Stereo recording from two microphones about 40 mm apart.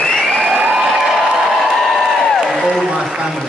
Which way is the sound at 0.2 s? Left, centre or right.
Centre.